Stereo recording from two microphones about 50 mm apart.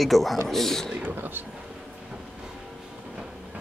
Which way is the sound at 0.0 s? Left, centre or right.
Centre.